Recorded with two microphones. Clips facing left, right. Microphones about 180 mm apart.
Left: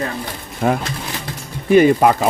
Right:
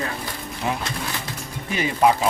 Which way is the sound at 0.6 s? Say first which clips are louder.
Left 8 dB; 50° left (ahead or behind).